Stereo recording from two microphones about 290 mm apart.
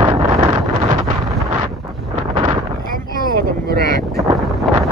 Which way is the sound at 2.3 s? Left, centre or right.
Centre.